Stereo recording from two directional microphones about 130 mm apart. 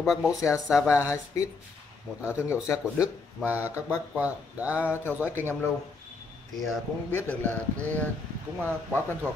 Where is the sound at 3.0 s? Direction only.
10° right (ahead or behind).